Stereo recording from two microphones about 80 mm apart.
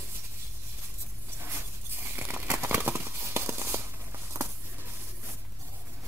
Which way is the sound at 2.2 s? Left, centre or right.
Right.